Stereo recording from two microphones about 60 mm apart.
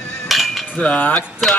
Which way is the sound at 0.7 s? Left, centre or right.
Left.